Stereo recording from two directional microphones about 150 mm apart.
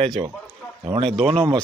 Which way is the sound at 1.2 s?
40° right (ahead or behind).